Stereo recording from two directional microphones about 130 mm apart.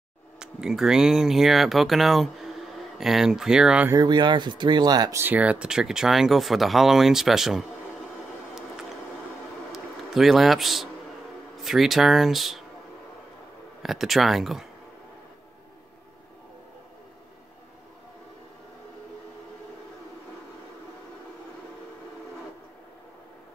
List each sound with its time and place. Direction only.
0.4 s speech: 5° right (ahead or behind)
3.9 s speech: 35° right (ahead or behind)
5.2 s speech: 10° right (ahead or behind)
9.7 s a sound: centre (ahead or behind)
11.5 s speech: centre (ahead or behind)
13.8 s speech: centre (ahead or behind)